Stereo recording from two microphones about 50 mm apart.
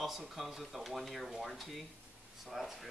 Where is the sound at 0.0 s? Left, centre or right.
Centre.